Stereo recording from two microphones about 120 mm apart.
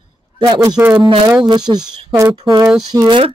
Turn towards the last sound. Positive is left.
turn(degrees=-25)  # may be behind; listen again after turning